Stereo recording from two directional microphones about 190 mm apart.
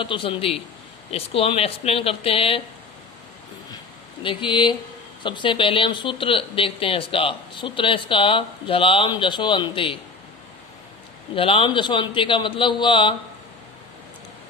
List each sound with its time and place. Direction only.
0.0 s speech: 25° left (ahead or behind)
3.7 s a sound: 25° left (ahead or behind)
5.2 s speech: 25° left (ahead or behind)
11.3 s speech: 30° left (ahead or behind)